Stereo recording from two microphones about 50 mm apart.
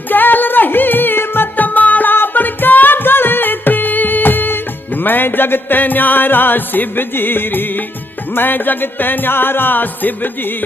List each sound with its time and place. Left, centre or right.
0.1 s music: left